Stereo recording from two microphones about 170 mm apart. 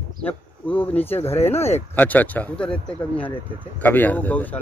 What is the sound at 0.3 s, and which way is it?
Speech, 10° left (ahead or behind).